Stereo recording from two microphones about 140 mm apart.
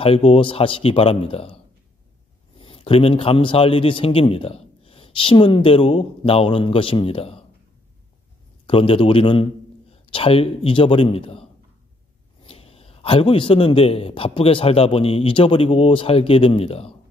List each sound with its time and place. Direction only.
0.0 s a man's voice: 45° left (ahead or behind)
8.6 s a man's voice: 40° left (ahead or behind)
12.4 s a man's voice: 45° left (ahead or behind)